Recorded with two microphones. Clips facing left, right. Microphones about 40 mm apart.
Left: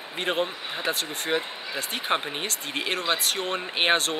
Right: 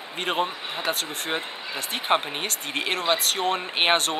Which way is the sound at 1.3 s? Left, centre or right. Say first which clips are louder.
Left 3 dB; centre.